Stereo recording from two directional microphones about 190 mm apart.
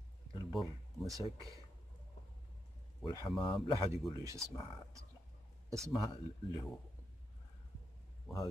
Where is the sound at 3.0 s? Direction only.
25° left (ahead or behind).